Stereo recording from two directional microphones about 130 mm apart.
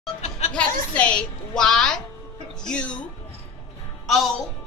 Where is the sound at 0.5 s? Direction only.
10° left (ahead or behind).